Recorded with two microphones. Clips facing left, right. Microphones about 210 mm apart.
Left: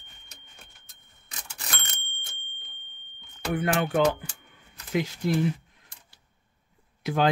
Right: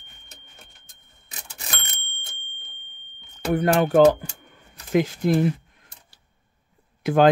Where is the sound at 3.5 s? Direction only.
40° right (ahead or behind).